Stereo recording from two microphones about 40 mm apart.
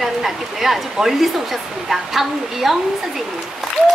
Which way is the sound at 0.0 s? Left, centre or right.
Centre.